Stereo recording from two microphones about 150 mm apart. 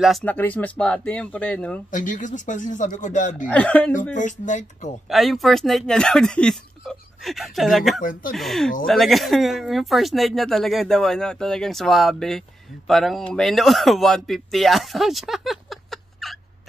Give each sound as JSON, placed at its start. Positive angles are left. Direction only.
{"t": 0.2, "sound": "speech", "side_deg": 10}
{"t": 1.9, "sound": "a man's voice", "side_deg": 60}
{"t": 3.4, "sound": "speech", "side_deg": 10}
{"t": 4.2, "sound": "speech", "side_deg": 55}
{"t": 5.1, "sound": "speech", "side_deg": 0}
{"t": 8.0, "sound": "a man's voice", "side_deg": 65}
{"t": 8.4, "sound": "speech", "side_deg": 0}